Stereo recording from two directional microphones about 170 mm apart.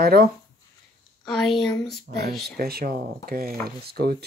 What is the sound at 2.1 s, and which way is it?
Speech, 60° right (ahead or behind).